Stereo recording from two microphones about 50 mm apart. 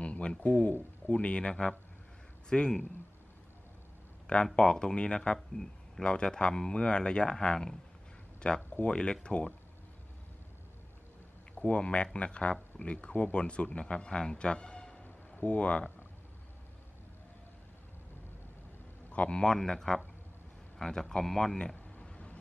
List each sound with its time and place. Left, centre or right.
0.0 s speech: left
1.5 s speech: centre
4.6 s speech: centre
11.5 s speech: left
15.4 s speech: left
19.0 s speech: left
21.9 s a sound: left